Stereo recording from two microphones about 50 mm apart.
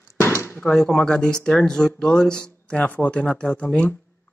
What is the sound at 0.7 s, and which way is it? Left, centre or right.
Speech, centre.